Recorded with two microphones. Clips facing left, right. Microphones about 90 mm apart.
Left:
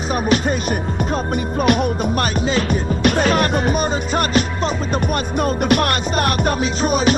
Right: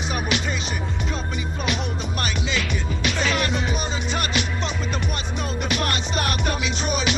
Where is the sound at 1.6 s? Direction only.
50° left (ahead or behind).